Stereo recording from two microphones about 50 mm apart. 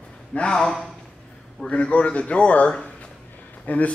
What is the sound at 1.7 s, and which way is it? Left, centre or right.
A man's voice, left.